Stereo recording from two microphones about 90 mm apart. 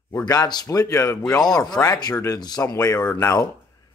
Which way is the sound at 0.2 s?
50° left (ahead or behind).